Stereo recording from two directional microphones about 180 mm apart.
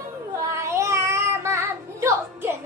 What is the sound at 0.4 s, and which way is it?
Child singing, 15° right (ahead or behind).